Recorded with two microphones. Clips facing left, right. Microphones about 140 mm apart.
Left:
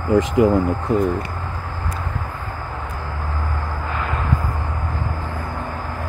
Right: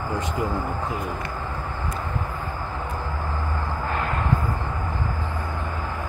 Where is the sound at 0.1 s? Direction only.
90° left.